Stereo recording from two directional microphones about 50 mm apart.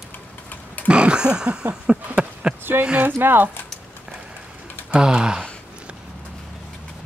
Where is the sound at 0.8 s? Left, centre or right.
Right.